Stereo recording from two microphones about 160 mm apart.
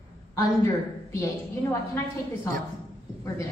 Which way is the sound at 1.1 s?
15° left (ahead or behind).